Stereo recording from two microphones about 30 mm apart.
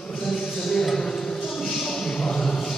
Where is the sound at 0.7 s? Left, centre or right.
Centre.